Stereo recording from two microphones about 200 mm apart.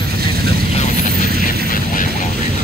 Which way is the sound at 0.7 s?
35° left (ahead or behind).